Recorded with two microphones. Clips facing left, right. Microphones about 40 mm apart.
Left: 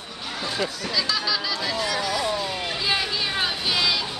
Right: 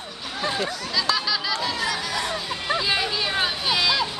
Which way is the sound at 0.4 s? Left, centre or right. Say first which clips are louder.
Right 2 dB; right.